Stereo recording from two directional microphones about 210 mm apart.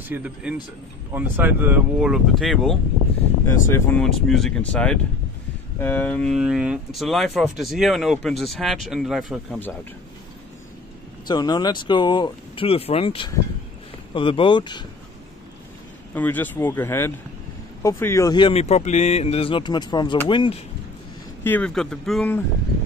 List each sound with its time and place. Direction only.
0.1 s speech: 5° right (ahead or behind)
3.4 s speech: 15° left (ahead or behind)
11.2 s speech: 20° left (ahead or behind)
16.2 s speech: 10° left (ahead or behind)
21.5 s speech: 5° left (ahead or behind)